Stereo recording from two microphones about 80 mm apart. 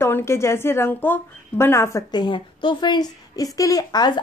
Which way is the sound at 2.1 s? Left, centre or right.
Left.